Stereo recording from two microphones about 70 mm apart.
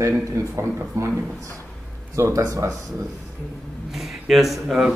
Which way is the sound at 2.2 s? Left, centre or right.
Right.